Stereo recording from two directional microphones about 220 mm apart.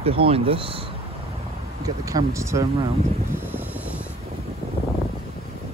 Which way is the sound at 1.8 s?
15° right (ahead or behind).